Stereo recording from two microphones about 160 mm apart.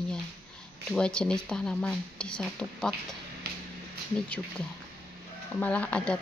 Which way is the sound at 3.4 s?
75° right (ahead or behind).